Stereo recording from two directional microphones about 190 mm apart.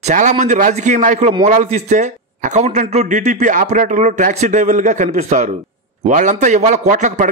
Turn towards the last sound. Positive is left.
turn(degrees=-40)  # may be behind; listen again after turning